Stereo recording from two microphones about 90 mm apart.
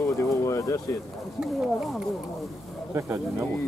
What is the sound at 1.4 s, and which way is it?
Speech, 5° right (ahead or behind).